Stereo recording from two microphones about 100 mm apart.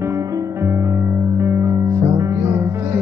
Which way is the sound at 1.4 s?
30° right (ahead or behind).